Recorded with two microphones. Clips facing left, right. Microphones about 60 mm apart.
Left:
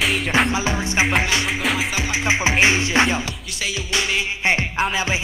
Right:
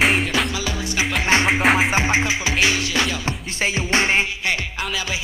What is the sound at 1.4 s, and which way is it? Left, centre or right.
Music, right.